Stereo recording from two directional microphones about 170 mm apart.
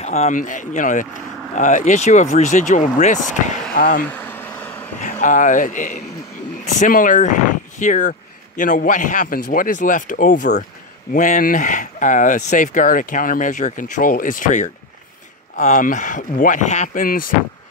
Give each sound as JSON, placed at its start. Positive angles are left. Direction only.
{"t": 0.0, "sound": "speech", "side_deg": 40}
{"t": 4.1, "sound": "vehicle", "side_deg": 10}
{"t": 5.0, "sound": "speech", "side_deg": 50}